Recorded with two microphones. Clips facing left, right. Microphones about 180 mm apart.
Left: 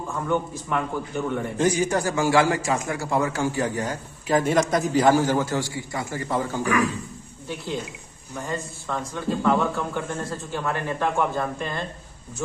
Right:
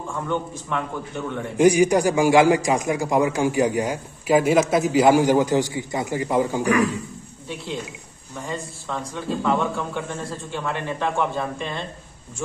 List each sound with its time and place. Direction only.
0.1 s a man's voice: 5° left (ahead or behind)
1.6 s a man's voice: 10° right (ahead or behind)
8.5 s speech: centre (ahead or behind)